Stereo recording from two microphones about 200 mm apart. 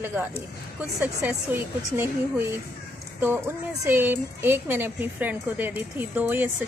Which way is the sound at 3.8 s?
10° right (ahead or behind).